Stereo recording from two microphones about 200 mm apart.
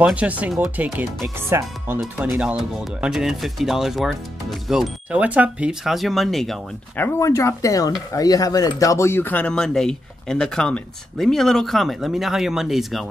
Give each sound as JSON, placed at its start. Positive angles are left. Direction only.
{"t": 0.0, "sound": "speech", "side_deg": -5}
{"t": 2.0, "sound": "speech", "side_deg": 0}
{"t": 7.1, "sound": "speech", "side_deg": 15}